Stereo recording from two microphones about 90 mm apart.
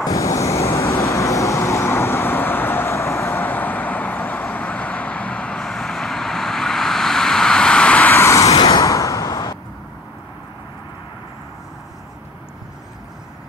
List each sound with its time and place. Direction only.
0.0 s vehicle: 40° left (ahead or behind); by 8.2 s 15° left (ahead or behind)
8.2 s vehicle: 35° left (ahead or behind)
8.6 s a sound: 40° left (ahead or behind)